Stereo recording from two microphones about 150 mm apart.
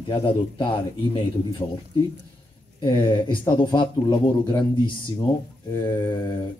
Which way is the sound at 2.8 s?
30° left (ahead or behind).